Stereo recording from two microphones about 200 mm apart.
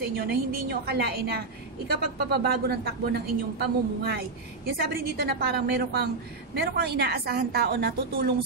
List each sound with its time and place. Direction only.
0.1 s a woman's voice: 50° right (ahead or behind)